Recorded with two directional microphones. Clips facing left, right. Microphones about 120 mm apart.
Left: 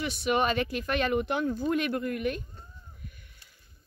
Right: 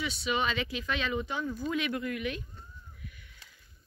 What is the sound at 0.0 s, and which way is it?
Speech, 55° left (ahead or behind).